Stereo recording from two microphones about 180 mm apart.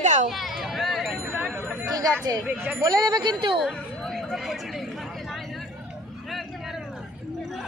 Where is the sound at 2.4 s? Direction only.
5° right (ahead or behind).